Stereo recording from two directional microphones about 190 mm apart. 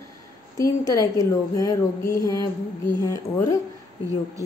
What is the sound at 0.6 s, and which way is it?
A woman's voice, 15° left (ahead or behind).